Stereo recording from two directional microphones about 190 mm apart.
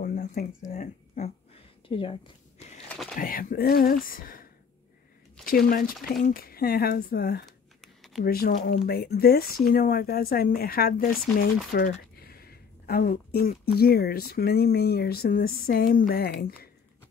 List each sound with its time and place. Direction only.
0.0 s a sound: 45° left (ahead or behind)
1.9 s speech: 25° left (ahead or behind)
2.9 s speech: 5° left (ahead or behind)
3.2 s speech: 45° left (ahead or behind)
5.7 s speech: 50° left (ahead or behind)
7.8 s a sound: centre (ahead or behind)
8.2 s speech: 50° left (ahead or behind)